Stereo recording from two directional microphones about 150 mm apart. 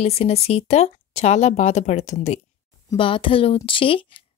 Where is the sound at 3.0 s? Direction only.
35° left (ahead or behind).